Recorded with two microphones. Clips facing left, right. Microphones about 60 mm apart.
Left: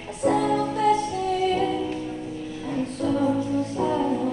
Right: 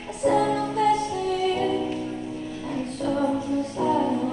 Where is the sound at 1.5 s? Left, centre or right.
Right.